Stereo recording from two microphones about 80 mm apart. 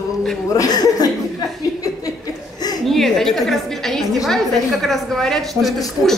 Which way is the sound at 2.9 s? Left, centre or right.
Centre.